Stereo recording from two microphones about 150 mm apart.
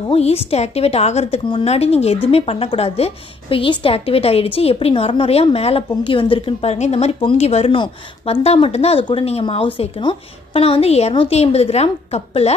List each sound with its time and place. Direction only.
0.1 s a woman's voice: 40° left (ahead or behind)